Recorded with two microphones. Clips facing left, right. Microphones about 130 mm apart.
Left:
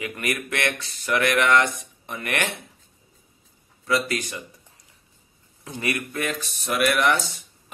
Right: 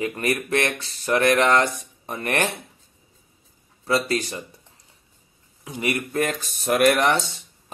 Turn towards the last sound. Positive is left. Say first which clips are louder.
# right 3 dB
turn(degrees=-30)  # may be behind; listen again after turning